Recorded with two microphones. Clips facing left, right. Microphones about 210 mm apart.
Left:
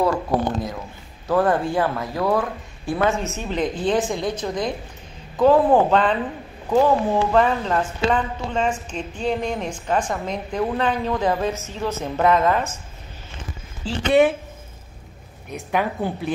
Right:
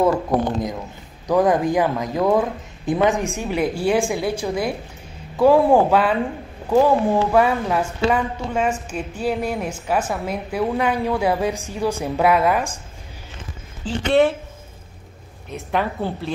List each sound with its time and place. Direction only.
1.2 s speech: 15° right (ahead or behind)
13.8 s a woman's voice: 10° left (ahead or behind)
15.5 s a woman's voice: 10° left (ahead or behind)